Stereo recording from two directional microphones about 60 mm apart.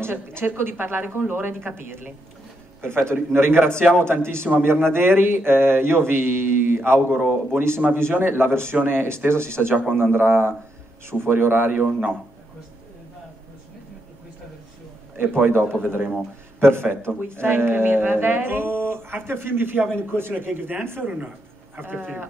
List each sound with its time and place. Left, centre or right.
0.0 s a woman's voice: right
2.8 s speech: right
15.1 s speech: right
21.0 s speech: right